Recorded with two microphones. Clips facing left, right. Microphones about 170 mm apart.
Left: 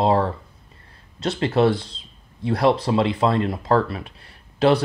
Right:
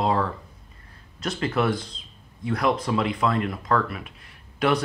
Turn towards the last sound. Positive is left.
turn(degrees=30)  # may be behind; listen again after turning